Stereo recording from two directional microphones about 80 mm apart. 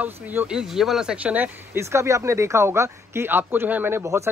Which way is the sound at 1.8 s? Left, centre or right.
Right.